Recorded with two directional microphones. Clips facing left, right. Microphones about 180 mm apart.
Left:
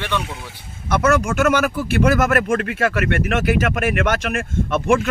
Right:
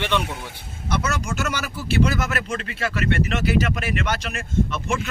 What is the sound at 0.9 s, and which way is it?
Speech, 50° left (ahead or behind).